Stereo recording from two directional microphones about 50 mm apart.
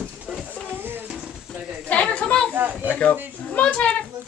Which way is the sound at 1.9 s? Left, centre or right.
Left.